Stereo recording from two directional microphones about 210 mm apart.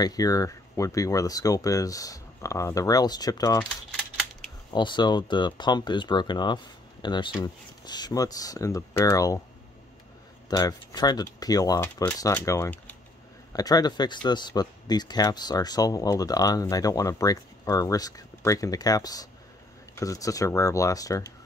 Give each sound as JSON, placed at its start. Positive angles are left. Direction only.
{"t": 0.0, "sound": "speech", "side_deg": 15}
{"t": 4.7, "sound": "speech", "side_deg": 20}
{"t": 10.5, "sound": "speech", "side_deg": 20}